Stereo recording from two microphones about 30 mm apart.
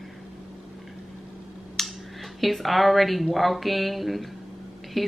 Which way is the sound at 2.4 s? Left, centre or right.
Centre.